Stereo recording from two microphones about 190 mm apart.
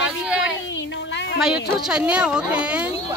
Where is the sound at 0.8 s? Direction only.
65° left (ahead or behind).